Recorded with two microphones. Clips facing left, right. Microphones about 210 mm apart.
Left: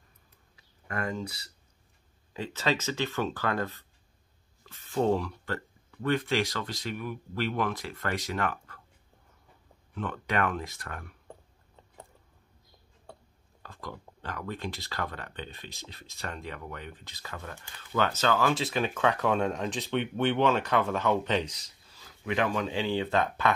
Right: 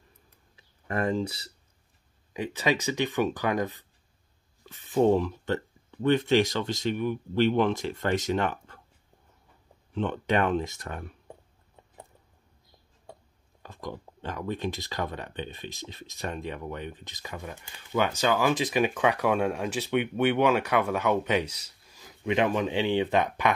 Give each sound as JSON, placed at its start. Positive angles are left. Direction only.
{"t": 0.6, "sound": "speech", "side_deg": -30}
{"t": 2.3, "sound": "speech", "side_deg": -15}
{"t": 9.9, "sound": "speech", "side_deg": -25}
{"t": 13.0, "sound": "speech", "side_deg": -15}